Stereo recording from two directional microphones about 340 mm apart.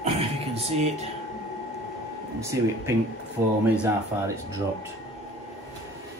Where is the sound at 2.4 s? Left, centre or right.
Centre.